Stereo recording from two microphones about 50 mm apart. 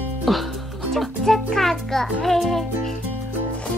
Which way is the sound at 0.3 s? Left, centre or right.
Centre.